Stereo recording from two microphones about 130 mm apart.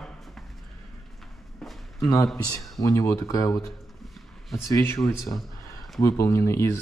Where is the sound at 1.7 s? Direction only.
Centre (ahead or behind).